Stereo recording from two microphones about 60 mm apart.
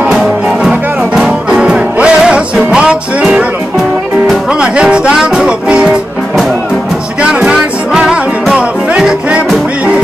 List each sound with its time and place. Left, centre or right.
0.6 s music: centre
4.5 s music: centre